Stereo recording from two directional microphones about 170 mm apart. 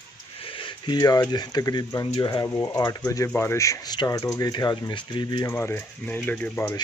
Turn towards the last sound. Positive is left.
turn(degrees=10)  # may be behind; listen again after turning